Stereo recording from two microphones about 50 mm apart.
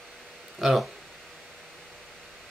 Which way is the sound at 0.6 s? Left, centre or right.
Centre.